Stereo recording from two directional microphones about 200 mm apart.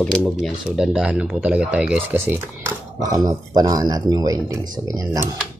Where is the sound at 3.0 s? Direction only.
20° right (ahead or behind).